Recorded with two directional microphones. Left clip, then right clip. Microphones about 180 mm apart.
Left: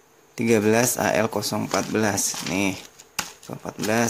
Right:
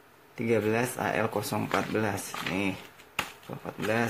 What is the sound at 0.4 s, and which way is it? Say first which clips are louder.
Speech: left 7 dB; 40° left (ahead or behind).